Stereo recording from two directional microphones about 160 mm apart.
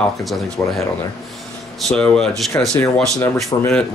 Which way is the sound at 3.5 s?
30° left (ahead or behind).